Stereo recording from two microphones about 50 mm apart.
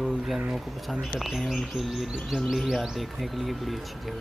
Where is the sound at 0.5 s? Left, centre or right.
Centre.